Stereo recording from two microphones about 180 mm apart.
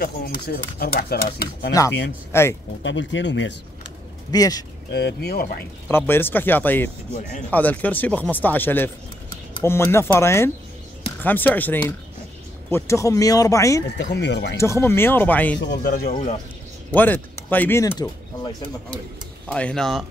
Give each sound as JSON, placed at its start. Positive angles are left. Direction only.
{"t": 0.0, "sound": "speech", "side_deg": 60}
{"t": 1.7, "sound": "speech", "side_deg": 20}
{"t": 2.8, "sound": "speech", "side_deg": 90}
{"t": 4.3, "sound": "speech", "side_deg": 20}
{"t": 4.9, "sound": "speech", "side_deg": 65}
{"t": 5.9, "sound": "speech", "side_deg": 10}
{"t": 14.1, "sound": "speech", "side_deg": 75}
{"t": 14.6, "sound": "speech", "side_deg": 15}
{"t": 15.6, "sound": "speech", "side_deg": 75}
{"t": 15.9, "sound": "speech", "side_deg": 50}
{"t": 16.9, "sound": "speech", "side_deg": 10}
{"t": 19.5, "sound": "speech", "side_deg": 5}